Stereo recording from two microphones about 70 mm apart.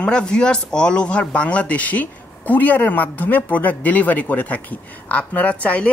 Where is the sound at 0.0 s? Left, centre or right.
Centre.